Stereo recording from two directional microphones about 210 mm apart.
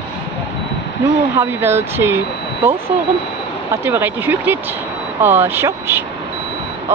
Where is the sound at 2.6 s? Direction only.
25° right (ahead or behind).